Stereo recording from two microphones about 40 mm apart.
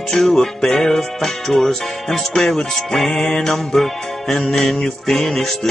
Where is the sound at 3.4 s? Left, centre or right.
Centre.